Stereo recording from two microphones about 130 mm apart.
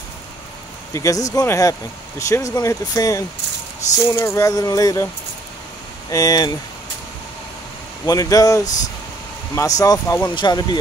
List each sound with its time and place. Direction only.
0.9 s speech: 25° left (ahead or behind)
6.0 s speech: 30° left (ahead or behind)
8.0 s speech: 25° left (ahead or behind)